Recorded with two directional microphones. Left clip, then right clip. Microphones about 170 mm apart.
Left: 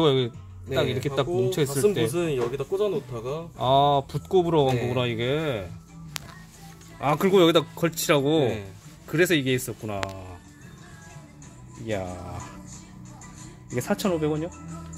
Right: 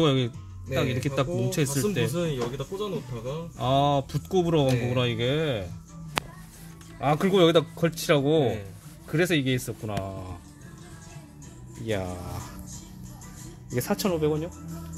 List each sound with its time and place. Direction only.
0.0 s speech: centre (ahead or behind)
2.1 s speech: 35° left (ahead or behind)
3.5 s speech: centre (ahead or behind)
7.0 s speech: centre (ahead or behind)
11.8 s speech: 5° right (ahead or behind)
13.7 s speech: centre (ahead or behind)
14.0 s speech: 10° left (ahead or behind)